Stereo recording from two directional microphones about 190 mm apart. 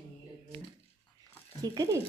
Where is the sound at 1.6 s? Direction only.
20° right (ahead or behind).